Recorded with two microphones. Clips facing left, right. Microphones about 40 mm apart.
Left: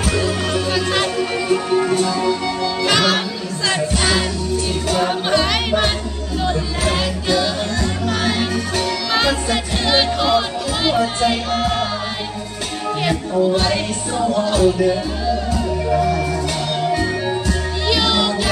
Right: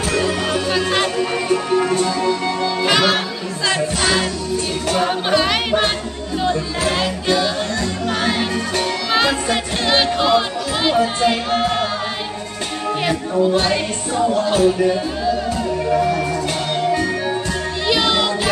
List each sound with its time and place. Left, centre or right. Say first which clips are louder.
0.2 s music: right 1 dB; centre
13.0 s speech: even; centre
14.5 s music: left 1 dB; centre
17.8 s music: even; centre